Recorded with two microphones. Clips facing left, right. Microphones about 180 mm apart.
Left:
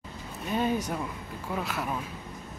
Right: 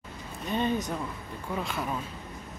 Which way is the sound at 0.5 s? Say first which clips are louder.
Even; 5° left (ahead or behind).